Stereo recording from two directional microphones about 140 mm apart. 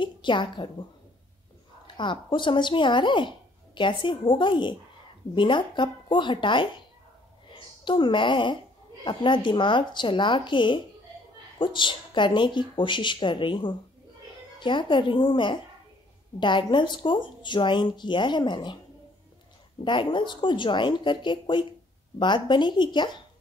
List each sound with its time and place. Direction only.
0.0 s a woman's voice: 35° left (ahead or behind)
2.0 s a woman's voice: 35° left (ahead or behind)
19.8 s speech: 35° left (ahead or behind)